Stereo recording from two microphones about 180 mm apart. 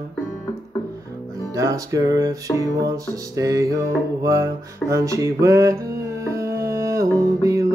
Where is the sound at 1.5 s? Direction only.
20° right (ahead or behind).